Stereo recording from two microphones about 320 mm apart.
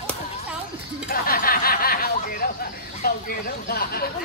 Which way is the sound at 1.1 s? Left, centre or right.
Left.